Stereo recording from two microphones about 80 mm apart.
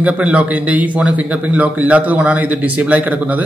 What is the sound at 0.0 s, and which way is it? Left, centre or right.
A man's voice, centre.